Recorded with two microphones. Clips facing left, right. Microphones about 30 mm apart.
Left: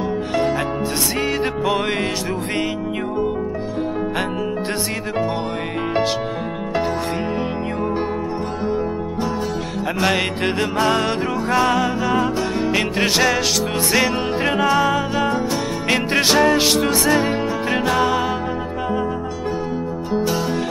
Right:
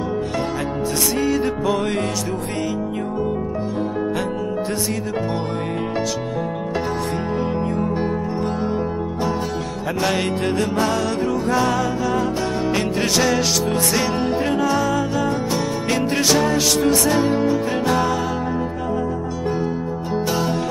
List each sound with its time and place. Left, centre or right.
1.1 s music: left
10.0 s music: left
13.2 s music: centre
13.7 s music: left